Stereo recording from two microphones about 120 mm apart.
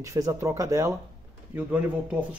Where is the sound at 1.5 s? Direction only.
15° right (ahead or behind).